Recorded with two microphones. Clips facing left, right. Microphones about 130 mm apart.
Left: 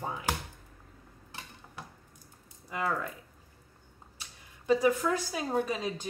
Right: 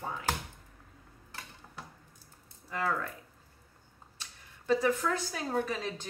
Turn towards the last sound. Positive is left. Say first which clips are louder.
# left 2 dB
turn(degrees=10)  # may be behind; listen again after turning